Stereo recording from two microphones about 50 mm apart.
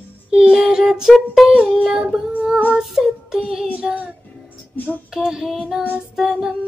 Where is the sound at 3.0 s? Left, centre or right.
Centre.